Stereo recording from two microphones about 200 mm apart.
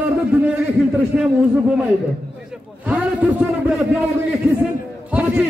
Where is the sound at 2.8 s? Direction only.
5° right (ahead or behind).